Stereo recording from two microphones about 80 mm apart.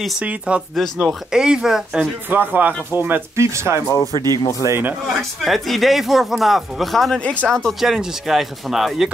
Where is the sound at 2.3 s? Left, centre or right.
Right.